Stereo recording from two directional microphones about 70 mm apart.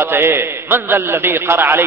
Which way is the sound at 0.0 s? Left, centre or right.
Right.